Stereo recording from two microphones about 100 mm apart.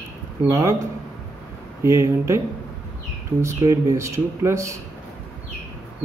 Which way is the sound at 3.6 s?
30° right (ahead or behind).